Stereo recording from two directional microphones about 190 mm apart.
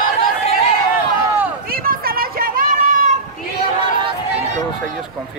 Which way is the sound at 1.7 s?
50° right (ahead or behind).